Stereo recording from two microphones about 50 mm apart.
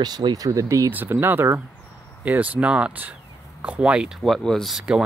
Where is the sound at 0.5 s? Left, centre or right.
Right.